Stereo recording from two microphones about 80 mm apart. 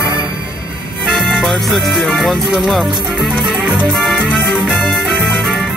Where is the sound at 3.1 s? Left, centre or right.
Centre.